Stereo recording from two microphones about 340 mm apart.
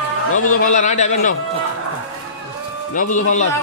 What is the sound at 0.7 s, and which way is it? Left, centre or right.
Speech, left.